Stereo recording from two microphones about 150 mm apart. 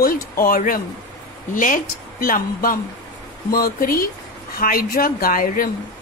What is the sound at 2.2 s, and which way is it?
Speech, 70° left (ahead or behind).